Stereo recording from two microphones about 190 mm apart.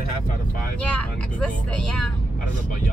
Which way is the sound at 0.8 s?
5° left (ahead or behind).